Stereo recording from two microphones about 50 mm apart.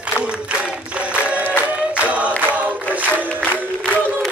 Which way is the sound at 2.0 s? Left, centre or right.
Right.